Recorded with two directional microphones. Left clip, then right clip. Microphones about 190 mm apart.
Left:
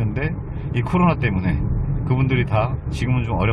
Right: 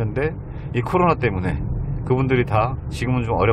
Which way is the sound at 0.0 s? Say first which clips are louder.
Right 4 dB; 30° right (ahead or behind).